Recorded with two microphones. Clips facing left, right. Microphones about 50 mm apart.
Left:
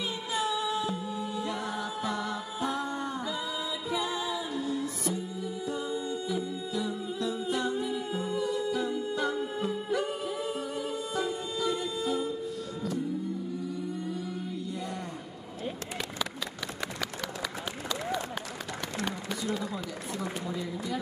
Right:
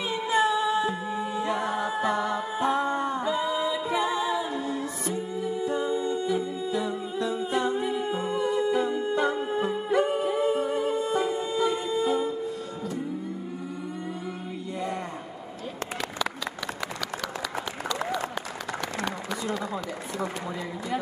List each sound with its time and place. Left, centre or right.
0.1 s singing: right